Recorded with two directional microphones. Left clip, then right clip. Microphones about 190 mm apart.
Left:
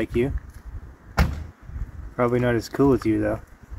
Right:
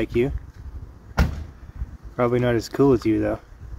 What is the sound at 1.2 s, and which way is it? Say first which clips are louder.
Cupboard open or close: left 1 dB; 45° left (ahead or behind).